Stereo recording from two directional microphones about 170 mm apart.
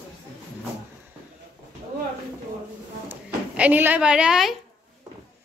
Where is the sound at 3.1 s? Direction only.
10° right (ahead or behind).